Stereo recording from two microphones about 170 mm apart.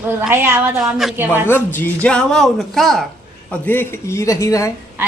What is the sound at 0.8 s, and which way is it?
Speech, 5° right (ahead or behind).